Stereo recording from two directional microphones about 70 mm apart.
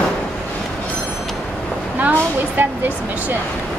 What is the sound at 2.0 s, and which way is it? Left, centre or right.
Speech, right.